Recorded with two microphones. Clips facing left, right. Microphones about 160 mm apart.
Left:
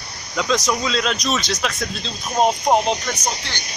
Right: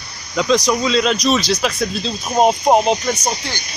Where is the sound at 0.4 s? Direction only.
Centre (ahead or behind).